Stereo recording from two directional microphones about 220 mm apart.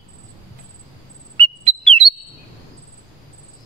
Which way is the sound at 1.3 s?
25° right (ahead or behind).